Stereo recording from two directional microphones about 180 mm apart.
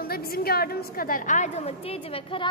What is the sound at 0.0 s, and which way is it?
A woman's voice, 55° left (ahead or behind).